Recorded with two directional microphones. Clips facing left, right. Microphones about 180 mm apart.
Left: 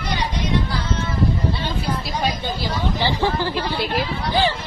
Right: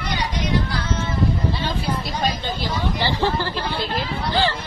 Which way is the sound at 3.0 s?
15° left (ahead or behind).